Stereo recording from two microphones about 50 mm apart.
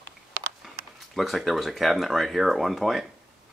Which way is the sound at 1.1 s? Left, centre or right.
Centre.